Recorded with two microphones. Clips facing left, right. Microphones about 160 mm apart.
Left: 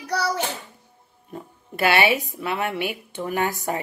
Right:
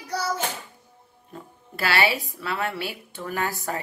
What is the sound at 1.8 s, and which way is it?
A woman's voice, 20° left (ahead or behind).